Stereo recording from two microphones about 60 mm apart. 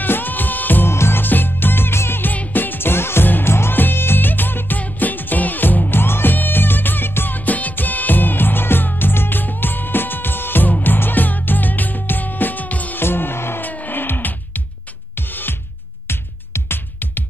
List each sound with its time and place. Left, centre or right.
0.0 s music: left
2.3 s music: left
13.0 s music: left